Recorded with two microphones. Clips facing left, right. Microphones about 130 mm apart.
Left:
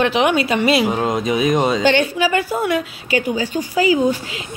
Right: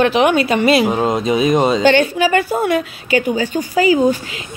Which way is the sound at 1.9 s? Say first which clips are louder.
Right 3 dB; 50° right (ahead or behind).